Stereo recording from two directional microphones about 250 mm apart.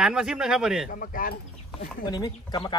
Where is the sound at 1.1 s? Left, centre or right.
Left.